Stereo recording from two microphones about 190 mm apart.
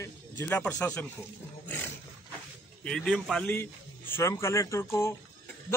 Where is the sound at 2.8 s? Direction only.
Centre (ahead or behind).